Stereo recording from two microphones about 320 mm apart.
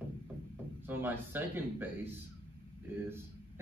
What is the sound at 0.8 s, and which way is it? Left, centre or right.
Speech, centre.